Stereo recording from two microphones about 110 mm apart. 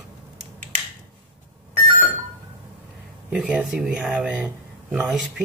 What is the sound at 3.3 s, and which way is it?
Speech, 10° right (ahead or behind).